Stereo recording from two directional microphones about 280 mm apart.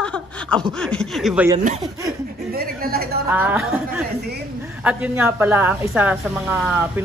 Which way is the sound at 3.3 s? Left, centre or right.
Centre.